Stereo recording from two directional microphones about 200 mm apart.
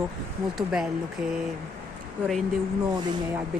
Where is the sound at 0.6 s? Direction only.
Centre (ahead or behind).